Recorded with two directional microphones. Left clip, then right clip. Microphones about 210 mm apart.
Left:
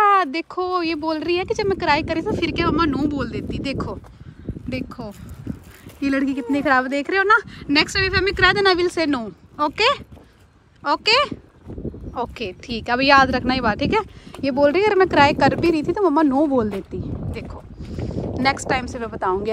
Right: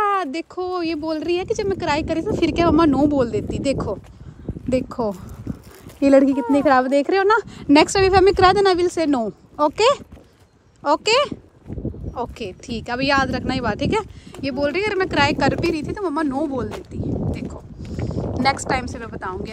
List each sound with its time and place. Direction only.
0.0 s speech: 10° right (ahead or behind)
2.5 s a woman's voice: 25° right (ahead or behind)
6.3 s a woman's voice: 20° right (ahead or behind)
7.5 s a woman's voice: 35° right (ahead or behind); by 17.5 s 5° left (ahead or behind)
18.3 s speech: 20° right (ahead or behind)
18.9 s speech: centre (ahead or behind)